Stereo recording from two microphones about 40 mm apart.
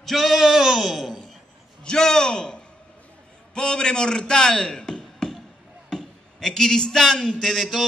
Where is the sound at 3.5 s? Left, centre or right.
Centre.